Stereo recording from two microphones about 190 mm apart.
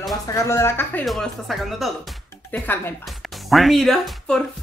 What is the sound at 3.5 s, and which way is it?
Speech, centre (ahead or behind).